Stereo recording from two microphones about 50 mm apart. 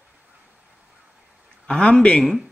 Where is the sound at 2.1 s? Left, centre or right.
Centre.